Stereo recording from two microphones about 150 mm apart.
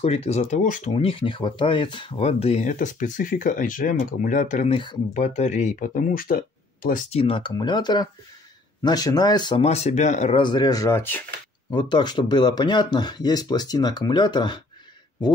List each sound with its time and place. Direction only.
0.0 s speech: 45° left (ahead or behind)
0.9 s speech: 35° left (ahead or behind); by 4.6 s 55° left (ahead or behind)
4.6 s speech: 35° left (ahead or behind)
5.1 s speech: 50° left (ahead or behind); by 7.1 s 70° left (ahead or behind)
7.1 s speech: 40° left (ahead or behind)
9.7 s speech: 50° left (ahead or behind)
10.3 s speech: 30° left (ahead or behind); by 11.2 s 15° left (ahead or behind)
11.7 s speech: 30° left (ahead or behind)